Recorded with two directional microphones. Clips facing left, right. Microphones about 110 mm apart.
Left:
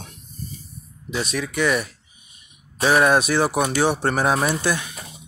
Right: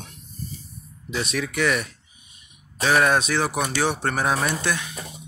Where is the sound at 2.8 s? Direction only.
10° left (ahead or behind).